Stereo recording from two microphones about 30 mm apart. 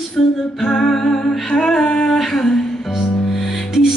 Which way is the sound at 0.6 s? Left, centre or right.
Centre.